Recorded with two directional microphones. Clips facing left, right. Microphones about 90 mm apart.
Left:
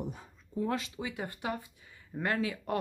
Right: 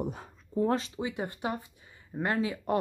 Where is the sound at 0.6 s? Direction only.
35° right (ahead or behind).